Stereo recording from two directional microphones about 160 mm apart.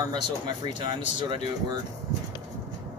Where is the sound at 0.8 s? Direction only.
30° right (ahead or behind).